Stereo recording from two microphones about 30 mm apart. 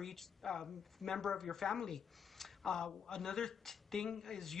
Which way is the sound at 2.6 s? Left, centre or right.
Left.